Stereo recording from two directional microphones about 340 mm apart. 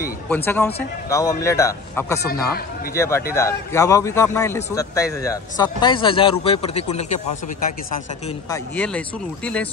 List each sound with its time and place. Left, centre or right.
0.3 s a man's voice: centre
2.2 s speech: left
3.0 s a man's voice: centre
8.3 s speech: centre